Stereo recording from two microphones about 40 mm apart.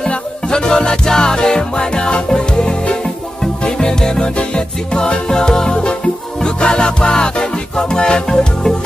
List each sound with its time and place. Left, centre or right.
0.0 s music: centre